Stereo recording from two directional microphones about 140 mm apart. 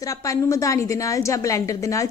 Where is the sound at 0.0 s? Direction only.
25° left (ahead or behind).